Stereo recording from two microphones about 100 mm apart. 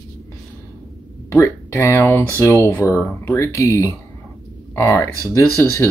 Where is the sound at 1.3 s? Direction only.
30° left (ahead or behind).